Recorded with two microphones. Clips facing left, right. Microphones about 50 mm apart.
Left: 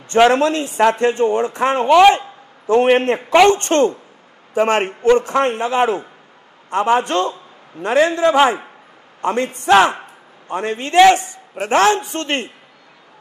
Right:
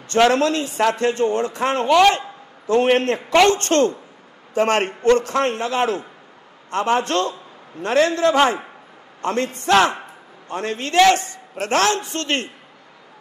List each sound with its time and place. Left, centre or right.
0.1 s a man's voice: left